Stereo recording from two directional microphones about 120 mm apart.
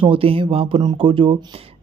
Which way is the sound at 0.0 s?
50° right (ahead or behind).